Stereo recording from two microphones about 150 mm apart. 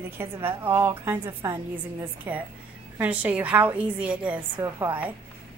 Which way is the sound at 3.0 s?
10° right (ahead or behind).